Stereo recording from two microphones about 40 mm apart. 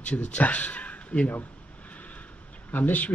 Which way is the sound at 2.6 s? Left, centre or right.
Left.